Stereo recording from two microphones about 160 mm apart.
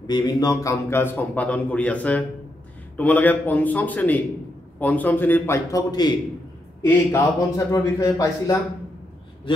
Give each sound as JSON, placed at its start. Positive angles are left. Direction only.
{"t": 0.0, "sound": "a man's voice", "side_deg": 25}